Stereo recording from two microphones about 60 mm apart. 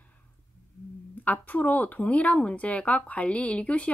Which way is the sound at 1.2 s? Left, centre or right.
Left.